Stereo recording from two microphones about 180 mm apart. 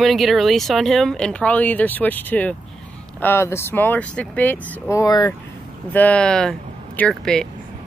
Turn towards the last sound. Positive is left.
turn(degrees=5)  # may be behind; listen again after turning